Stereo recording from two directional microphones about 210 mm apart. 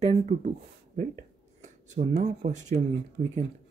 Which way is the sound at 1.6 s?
35° right (ahead or behind).